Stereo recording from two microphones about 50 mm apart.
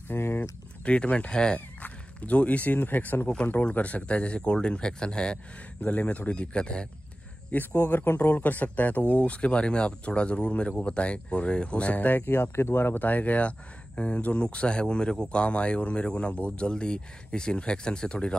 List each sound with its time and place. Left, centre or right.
0.1 s speech: left
0.8 s speech: left
1.8 s speech: left
3.3 s speech: left
7.5 s speech: left
12.4 s speech: left; by 18.4 s centre